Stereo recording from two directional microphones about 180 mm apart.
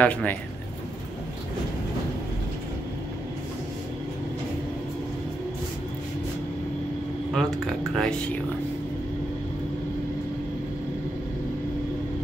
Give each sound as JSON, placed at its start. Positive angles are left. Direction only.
{"t": 0.0, "sound": "speech", "side_deg": 5}
{"t": 7.3, "sound": "speech", "side_deg": 0}